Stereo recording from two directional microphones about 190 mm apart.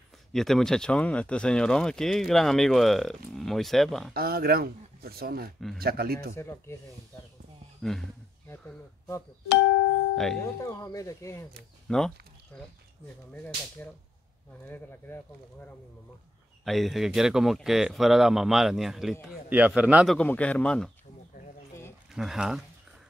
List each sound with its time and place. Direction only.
0.3 s speech: centre (ahead or behind)
4.1 s speech: 55° right (ahead or behind)
6.3 s speech: 15° left (ahead or behind)
7.8 s speech: 5° left (ahead or behind)
8.5 s speech: 15° left (ahead or behind)
10.1 s speech: centre (ahead or behind)
10.4 s speech: 15° left (ahead or behind)
11.9 s speech: 5° left (ahead or behind)
16.6 s a man's voice: centre (ahead or behind)
20.2 s speech: 5° left (ahead or behind)
22.1 s speech: centre (ahead or behind)